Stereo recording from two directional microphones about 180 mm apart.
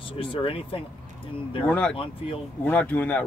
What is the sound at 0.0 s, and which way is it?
Speech, 30° left (ahead or behind).